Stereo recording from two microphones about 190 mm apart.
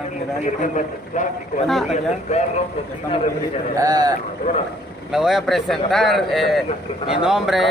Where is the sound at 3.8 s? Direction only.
20° right (ahead or behind).